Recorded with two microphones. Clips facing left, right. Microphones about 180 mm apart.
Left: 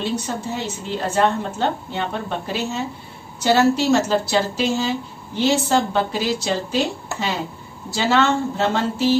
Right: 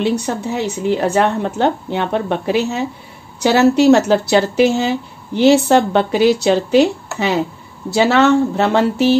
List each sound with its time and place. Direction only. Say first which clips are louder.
0.0 s a woman's voice: right 6 dB; 65° right (ahead or behind)